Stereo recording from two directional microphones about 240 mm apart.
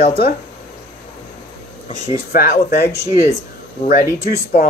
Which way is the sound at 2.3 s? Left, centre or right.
Left.